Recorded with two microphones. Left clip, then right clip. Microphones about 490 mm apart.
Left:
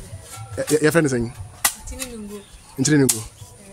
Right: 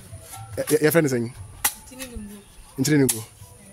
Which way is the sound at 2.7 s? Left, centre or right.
Right.